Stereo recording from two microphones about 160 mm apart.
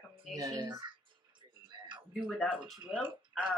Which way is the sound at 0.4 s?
20° right (ahead or behind).